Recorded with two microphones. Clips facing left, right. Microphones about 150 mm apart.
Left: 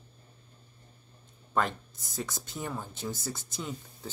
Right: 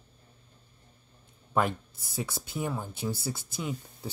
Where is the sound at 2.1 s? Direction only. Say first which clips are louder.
Right 2 dB; 10° right (ahead or behind).